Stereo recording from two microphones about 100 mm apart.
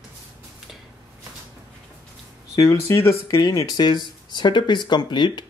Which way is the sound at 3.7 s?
45° left (ahead or behind).